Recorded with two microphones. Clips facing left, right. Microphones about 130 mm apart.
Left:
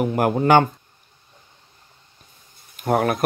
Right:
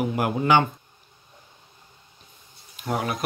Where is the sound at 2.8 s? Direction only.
55° left (ahead or behind).